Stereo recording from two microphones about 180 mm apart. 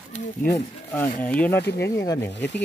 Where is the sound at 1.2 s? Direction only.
10° left (ahead or behind).